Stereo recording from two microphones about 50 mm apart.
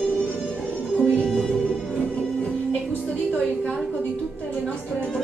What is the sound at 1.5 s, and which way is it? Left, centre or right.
Music, centre.